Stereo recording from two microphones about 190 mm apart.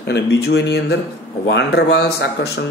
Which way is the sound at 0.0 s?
60° left (ahead or behind).